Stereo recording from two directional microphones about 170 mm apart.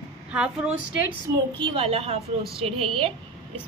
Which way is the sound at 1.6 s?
35° right (ahead or behind).